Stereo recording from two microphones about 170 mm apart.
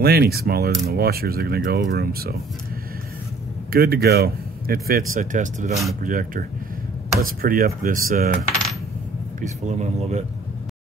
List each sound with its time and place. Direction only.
0.0 s speech: 65° right (ahead or behind)
3.7 s speech: 65° right (ahead or behind)
5.2 s speech: 45° right (ahead or behind)
9.4 s speech: 40° right (ahead or behind)